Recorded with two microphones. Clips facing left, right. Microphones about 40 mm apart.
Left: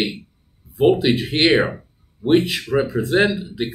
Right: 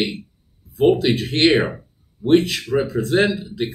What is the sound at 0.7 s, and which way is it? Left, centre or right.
Speech, left.